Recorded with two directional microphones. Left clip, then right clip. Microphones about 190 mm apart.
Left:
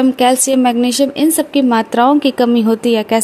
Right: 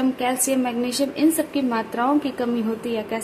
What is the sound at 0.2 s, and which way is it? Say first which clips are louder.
A woman's voice: left 11 dB; 45° left (ahead or behind).